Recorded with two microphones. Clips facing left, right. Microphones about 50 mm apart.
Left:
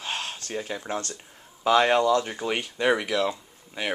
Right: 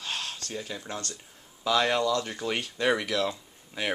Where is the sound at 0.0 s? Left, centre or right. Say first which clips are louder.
Left 3 dB; left.